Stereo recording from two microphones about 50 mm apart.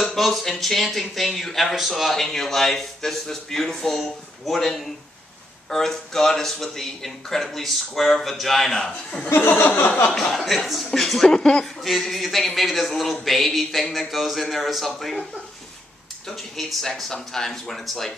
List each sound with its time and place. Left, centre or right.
0.0 s speech: centre
9.3 s chuckle: left
9.8 s a sound: left
10.3 s speech: centre
11.6 s speech: centre
16.3 s speech: centre